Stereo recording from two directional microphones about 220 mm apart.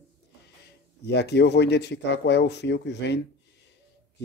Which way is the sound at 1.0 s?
50° left (ahead or behind).